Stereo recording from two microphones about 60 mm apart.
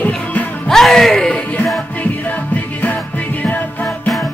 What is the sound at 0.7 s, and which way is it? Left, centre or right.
Speech, centre.